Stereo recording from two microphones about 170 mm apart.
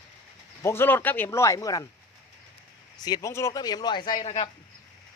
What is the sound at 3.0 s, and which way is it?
Speech, 20° left (ahead or behind).